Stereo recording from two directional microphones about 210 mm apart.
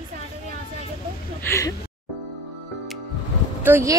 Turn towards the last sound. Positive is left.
turn(degrees=-10)  # may be behind; listen again after turning